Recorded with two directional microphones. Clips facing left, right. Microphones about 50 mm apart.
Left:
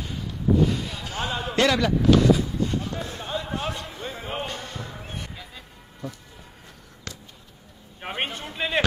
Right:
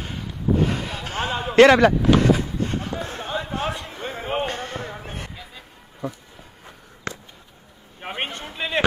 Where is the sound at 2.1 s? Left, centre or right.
Right.